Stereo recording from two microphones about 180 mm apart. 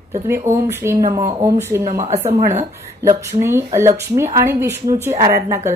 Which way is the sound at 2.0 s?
35° right (ahead or behind).